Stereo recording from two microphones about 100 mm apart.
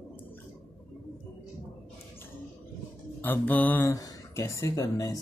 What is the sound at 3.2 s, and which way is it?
Mantra, 20° left (ahead or behind).